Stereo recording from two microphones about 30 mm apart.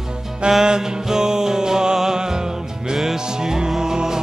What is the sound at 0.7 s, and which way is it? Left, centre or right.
Music, right.